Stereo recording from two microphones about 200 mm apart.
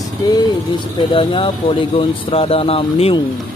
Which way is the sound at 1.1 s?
25° left (ahead or behind).